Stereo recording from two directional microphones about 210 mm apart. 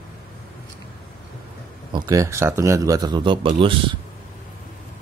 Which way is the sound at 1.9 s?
20° right (ahead or behind).